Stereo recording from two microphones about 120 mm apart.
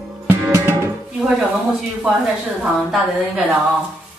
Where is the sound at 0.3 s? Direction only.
20° right (ahead or behind).